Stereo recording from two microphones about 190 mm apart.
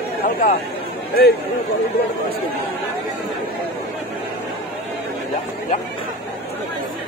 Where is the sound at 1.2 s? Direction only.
55° left (ahead or behind).